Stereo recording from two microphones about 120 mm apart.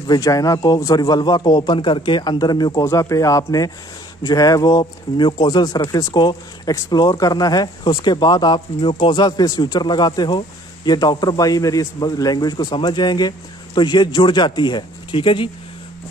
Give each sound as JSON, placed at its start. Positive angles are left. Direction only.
{"t": 0.0, "sound": "speech", "side_deg": 30}
{"t": 2.8, "sound": "speech", "side_deg": 25}